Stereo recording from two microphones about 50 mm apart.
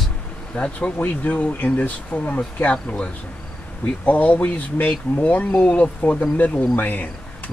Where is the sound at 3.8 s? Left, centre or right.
Left.